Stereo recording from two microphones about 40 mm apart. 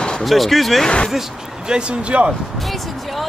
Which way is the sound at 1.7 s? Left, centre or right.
Right.